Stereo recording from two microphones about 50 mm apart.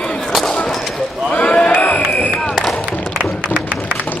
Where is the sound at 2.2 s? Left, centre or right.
Left.